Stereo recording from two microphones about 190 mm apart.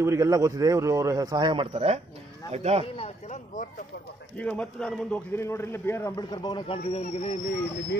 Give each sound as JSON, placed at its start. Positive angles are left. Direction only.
{"t": 0.0, "sound": "a man's voice", "side_deg": -15}
{"t": 3.0, "sound": "speech", "side_deg": 40}
{"t": 4.4, "sound": "a man's voice", "side_deg": 5}